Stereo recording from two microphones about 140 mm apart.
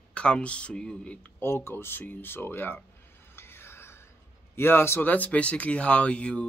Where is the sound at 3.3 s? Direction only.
15° left (ahead or behind).